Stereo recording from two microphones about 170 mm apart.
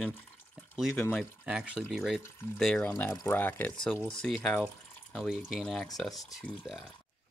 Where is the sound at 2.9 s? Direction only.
15° left (ahead or behind); by 6.9 s centre (ahead or behind).